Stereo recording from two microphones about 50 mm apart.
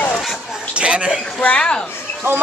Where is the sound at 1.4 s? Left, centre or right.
Centre.